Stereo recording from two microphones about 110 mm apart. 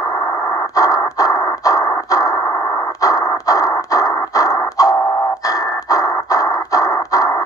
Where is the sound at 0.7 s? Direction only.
35° left (ahead or behind).